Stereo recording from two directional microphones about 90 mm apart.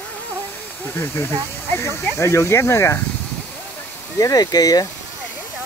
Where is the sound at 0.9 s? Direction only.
25° left (ahead or behind).